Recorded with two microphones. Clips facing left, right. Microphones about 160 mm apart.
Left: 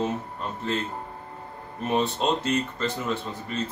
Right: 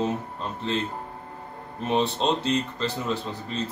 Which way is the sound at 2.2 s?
5° left (ahead or behind).